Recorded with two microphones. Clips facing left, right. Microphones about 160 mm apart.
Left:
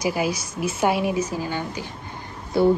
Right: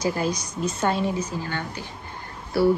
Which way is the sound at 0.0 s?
10° left (ahead or behind).